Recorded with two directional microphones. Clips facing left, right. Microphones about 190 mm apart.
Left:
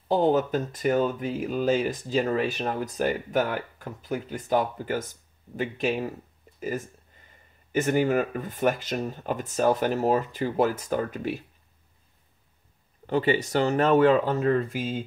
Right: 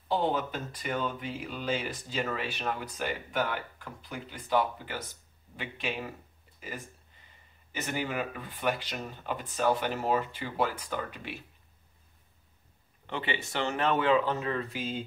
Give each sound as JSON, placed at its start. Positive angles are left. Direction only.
{"t": 0.1, "sound": "speech", "side_deg": 45}
{"t": 7.7, "sound": "speech", "side_deg": 50}
{"t": 13.0, "sound": "speech", "side_deg": 40}